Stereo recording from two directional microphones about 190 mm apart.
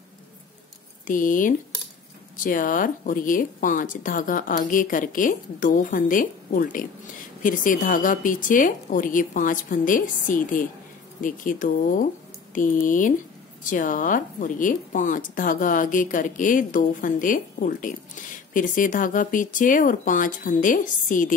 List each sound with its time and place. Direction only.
1.0 s a woman's voice: 45° left (ahead or behind)